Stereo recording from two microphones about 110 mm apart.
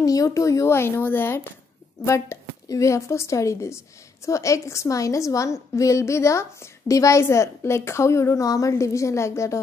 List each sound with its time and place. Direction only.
0.0 s a woman's voice: 30° left (ahead or behind)